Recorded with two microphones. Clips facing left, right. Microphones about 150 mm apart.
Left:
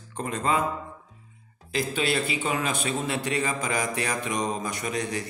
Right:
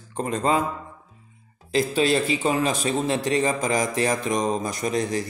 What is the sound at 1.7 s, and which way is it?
Speech, 35° right (ahead or behind).